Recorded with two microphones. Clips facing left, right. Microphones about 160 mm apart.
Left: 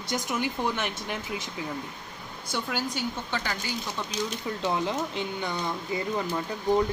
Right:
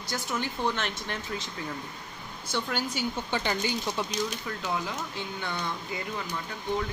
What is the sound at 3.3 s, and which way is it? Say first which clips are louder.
Speech: right 5 dB; 20° right (ahead or behind).